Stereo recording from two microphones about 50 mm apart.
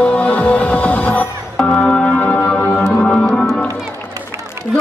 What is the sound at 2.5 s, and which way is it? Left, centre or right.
Music, centre.